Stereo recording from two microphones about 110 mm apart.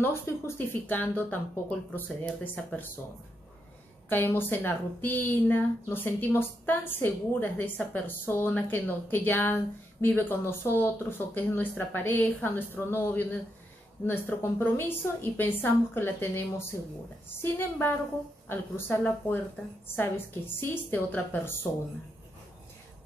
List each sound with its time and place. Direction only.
0.0 s speech: 20° left (ahead or behind)
4.1 s a woman's voice: 20° left (ahead or behind)
20.6 s a woman's voice: 20° left (ahead or behind)